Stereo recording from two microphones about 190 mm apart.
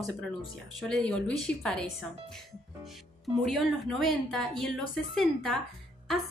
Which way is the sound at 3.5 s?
Centre (ahead or behind).